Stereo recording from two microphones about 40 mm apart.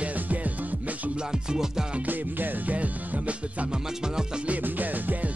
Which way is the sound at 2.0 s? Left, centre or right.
Right.